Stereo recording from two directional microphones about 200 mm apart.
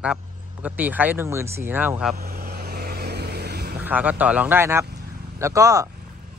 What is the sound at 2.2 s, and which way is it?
Vehicle, 50° right (ahead or behind).